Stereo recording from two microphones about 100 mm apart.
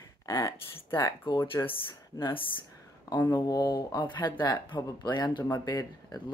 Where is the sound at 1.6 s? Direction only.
60° left (ahead or behind).